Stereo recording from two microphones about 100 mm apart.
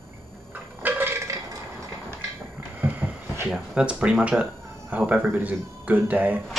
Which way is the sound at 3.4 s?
10° right (ahead or behind).